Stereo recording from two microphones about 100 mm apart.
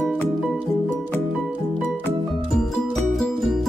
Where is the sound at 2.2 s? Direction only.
Centre (ahead or behind).